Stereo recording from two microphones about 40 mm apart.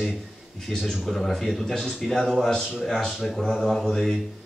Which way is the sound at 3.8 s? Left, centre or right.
Centre.